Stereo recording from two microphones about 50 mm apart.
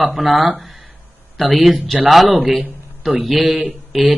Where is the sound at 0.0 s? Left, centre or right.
Centre.